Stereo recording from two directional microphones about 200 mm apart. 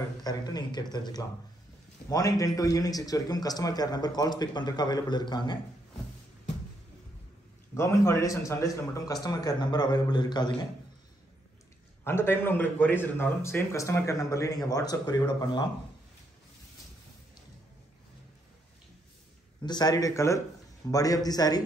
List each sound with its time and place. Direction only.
0.2 s a man's voice: 20° left (ahead or behind)
7.7 s a man's voice: 15° left (ahead or behind)
12.0 s a man's voice: 10° left (ahead or behind)
19.6 s a man's voice: 20° left (ahead or behind)